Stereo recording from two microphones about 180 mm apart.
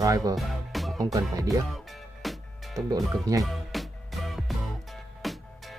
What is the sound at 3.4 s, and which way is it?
Music, centre (ahead or behind).